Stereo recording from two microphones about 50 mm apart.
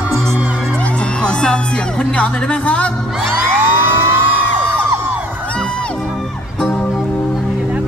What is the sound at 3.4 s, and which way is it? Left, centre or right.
Music, right.